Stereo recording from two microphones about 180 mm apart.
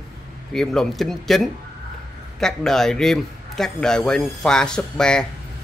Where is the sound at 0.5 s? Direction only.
Centre (ahead or behind).